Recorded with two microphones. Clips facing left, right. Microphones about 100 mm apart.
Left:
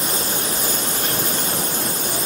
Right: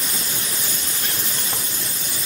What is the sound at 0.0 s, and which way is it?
Vehicle, 40° left (ahead or behind).